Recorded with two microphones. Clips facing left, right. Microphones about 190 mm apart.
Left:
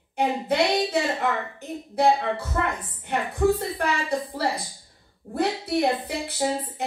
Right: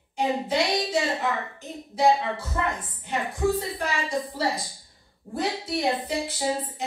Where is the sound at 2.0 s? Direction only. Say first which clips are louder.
Left 1 dB; 60° left (ahead or behind).